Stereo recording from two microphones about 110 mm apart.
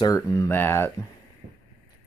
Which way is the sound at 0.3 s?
20° left (ahead or behind).